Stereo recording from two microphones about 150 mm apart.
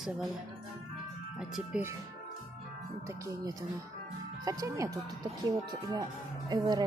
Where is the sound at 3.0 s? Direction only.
20° right (ahead or behind).